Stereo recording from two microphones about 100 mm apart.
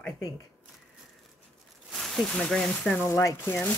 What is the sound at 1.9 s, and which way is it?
Speech, 5° left (ahead or behind).